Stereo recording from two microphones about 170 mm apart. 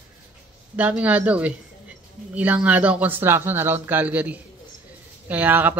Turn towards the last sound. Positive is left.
turn(degrees=-10)  # may be behind; listen again after turning